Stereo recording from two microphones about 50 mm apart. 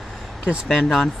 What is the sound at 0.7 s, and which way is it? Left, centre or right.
Speech, centre.